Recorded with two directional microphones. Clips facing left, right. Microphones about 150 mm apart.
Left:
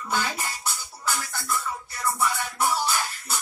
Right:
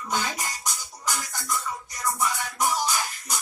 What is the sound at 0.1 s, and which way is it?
Music, 15° right (ahead or behind).